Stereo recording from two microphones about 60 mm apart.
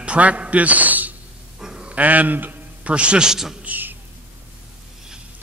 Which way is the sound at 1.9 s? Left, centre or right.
Right.